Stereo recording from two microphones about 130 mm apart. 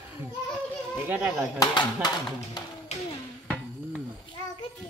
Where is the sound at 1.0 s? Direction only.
15° right (ahead or behind).